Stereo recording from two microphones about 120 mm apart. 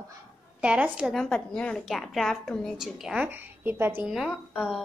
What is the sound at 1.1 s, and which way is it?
A woman's voice, 5° left (ahead or behind).